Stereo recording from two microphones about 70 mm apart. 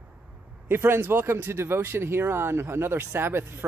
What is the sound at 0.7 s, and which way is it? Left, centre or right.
Speech, right.